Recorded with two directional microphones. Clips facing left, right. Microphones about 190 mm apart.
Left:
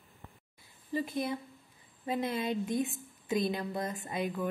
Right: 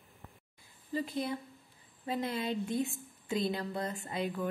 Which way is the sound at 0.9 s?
15° left (ahead or behind).